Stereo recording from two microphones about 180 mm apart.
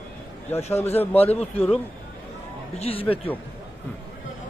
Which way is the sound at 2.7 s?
35° left (ahead or behind).